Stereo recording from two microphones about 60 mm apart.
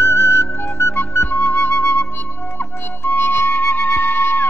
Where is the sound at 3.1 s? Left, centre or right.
Left.